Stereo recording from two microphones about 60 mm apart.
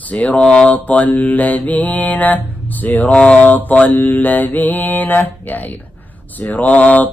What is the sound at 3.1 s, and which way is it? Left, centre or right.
Mantra, centre.